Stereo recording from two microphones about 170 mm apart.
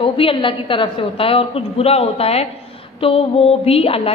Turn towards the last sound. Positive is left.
turn(degrees=35)  # may be behind; listen again after turning